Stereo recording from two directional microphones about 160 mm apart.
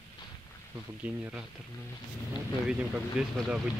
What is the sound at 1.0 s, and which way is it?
Speech, 10° right (ahead or behind).